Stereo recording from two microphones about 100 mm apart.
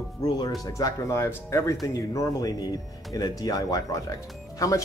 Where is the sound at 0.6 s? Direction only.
35° left (ahead or behind).